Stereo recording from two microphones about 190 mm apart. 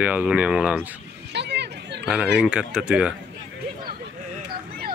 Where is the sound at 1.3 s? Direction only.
65° right (ahead or behind).